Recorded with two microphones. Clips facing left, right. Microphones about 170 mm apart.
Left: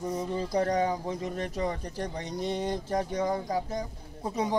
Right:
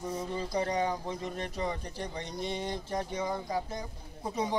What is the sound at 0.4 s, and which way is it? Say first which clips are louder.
Speech: left 4 dB; 40° left (ahead or behind).